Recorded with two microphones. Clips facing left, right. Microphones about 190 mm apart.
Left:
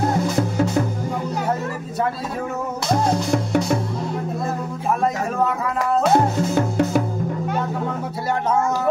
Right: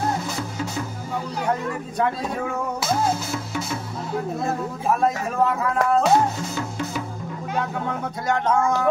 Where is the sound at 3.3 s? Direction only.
55° left (ahead or behind).